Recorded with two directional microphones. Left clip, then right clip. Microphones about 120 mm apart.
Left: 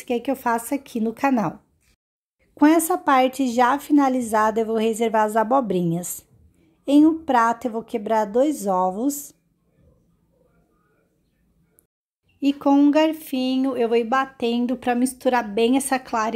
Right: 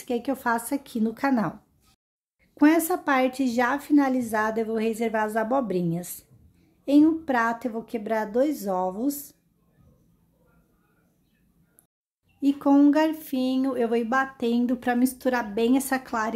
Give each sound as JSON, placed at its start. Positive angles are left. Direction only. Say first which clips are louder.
{"t": 0.0, "sound": "speech", "louder": "left 4 dB", "side_deg": 15}
{"t": 2.5, "sound": "a woman's voice", "louder": "left 3 dB", "side_deg": 20}
{"t": 12.4, "sound": "speech", "louder": "left 2 dB", "side_deg": 15}